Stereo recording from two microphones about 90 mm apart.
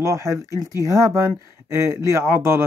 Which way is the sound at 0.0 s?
35° right (ahead or behind).